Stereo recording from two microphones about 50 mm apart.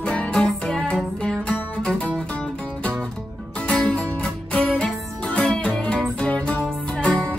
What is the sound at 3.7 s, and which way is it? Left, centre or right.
Music, left.